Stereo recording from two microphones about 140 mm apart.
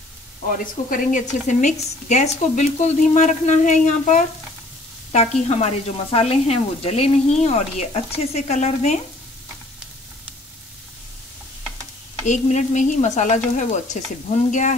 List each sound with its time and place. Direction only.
0.8 s speech: 70° left (ahead or behind)
12.3 s speech: 60° left (ahead or behind)